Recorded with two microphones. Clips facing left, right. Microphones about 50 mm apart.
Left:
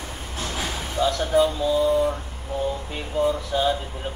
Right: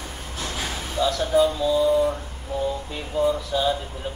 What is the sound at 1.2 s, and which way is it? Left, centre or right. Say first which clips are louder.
Speech: right 1 dB; centre.